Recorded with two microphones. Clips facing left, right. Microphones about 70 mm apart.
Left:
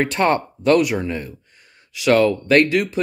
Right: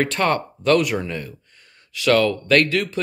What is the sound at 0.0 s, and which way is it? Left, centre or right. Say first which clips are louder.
Speech: left 2 dB; centre.